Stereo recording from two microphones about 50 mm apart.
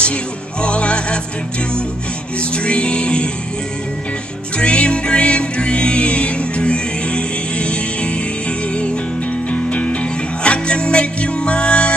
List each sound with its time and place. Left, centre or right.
0.0 s music: left
2.5 s music: left
4.6 s music: centre